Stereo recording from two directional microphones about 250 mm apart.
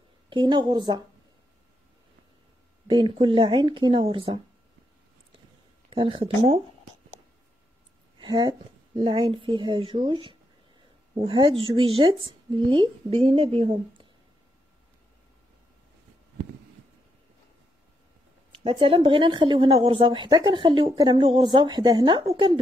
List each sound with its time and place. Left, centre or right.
0.3 s a woman's voice: centre
2.9 s speech: centre
5.9 s speech: right
8.2 s speech: centre
18.5 s speech: right